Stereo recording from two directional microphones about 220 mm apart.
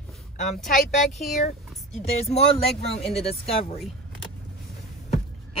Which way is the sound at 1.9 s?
30° left (ahead or behind).